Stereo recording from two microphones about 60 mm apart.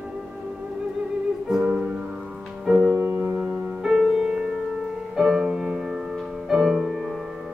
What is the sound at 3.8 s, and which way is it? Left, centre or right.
Music, centre.